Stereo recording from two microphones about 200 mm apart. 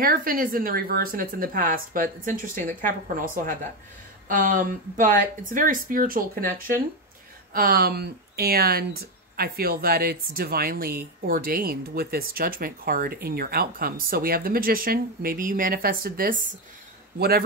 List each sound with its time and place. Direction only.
0.0 s a woman's voice: 45° right (ahead or behind)